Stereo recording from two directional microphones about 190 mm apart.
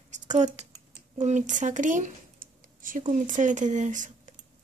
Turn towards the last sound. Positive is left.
turn(degrees=-40)  # may be behind; listen again after turning